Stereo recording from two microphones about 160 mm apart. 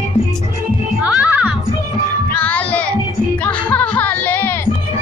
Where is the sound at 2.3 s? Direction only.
10° left (ahead or behind).